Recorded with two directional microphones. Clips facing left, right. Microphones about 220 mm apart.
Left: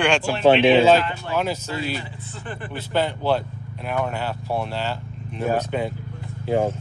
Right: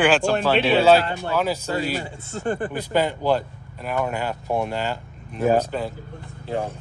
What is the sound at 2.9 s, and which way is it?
Speech, 10° right (ahead or behind).